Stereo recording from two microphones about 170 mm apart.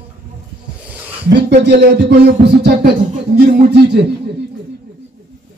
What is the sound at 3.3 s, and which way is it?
Speech, 80° right.